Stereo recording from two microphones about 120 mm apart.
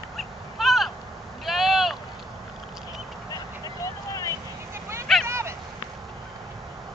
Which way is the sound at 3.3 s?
30° left (ahead or behind).